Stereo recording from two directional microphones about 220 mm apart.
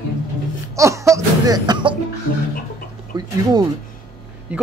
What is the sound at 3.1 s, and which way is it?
Music, 20° right (ahead or behind).